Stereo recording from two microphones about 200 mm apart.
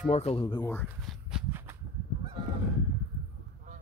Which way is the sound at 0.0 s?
30° left (ahead or behind).